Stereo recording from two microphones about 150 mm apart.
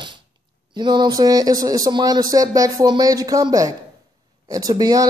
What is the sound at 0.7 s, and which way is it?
Speech, 30° right (ahead or behind).